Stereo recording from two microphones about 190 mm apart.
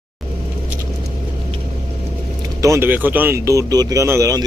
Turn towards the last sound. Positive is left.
turn(degrees=-15)  # may be behind; listen again after turning